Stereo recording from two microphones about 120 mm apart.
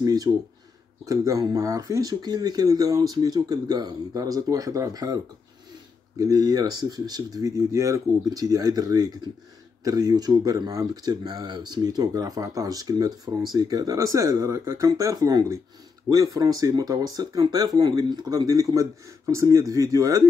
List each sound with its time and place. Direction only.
0.0 s speech: 30° right (ahead or behind)